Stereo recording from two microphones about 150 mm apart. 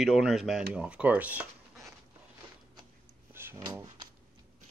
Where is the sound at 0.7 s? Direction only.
5° right (ahead or behind).